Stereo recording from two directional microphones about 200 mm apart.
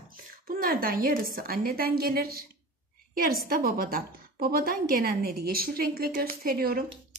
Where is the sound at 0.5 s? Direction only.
45° right (ahead or behind).